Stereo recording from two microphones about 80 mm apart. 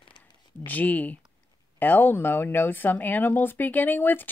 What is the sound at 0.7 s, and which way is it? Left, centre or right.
Speech, left.